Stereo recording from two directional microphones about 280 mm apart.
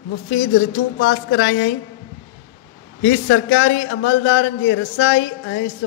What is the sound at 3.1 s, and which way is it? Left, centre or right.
A man's voice, left.